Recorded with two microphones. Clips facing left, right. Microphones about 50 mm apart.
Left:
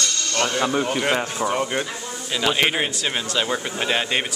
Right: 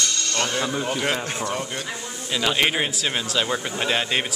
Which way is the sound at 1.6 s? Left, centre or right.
Left.